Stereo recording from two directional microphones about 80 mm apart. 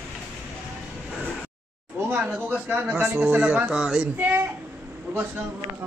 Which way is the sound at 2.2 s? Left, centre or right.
Centre.